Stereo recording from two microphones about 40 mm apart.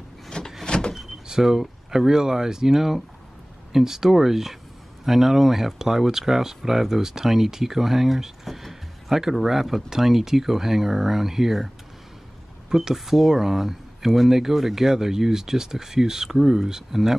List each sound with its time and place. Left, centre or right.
0.3 s door: left
0.7 s vehicle: left
1.2 s speech: centre
12.6 s a sound: centre
12.9 s speech: centre